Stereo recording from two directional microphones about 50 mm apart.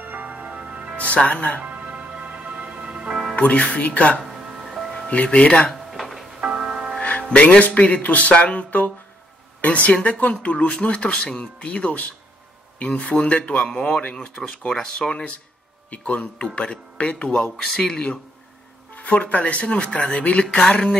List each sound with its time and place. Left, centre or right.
0.0 s music: right
0.9 s speech: left
1.6 s music: right
3.3 s speech: left
4.2 s music: centre
5.1 s speech: left
5.7 s drawer open or close: centre
6.4 s music: centre
7.0 s speech: left
18.9 s speech: left; by 20.9 s centre